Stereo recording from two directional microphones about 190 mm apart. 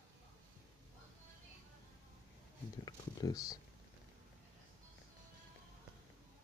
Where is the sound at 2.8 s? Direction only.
20° left (ahead or behind).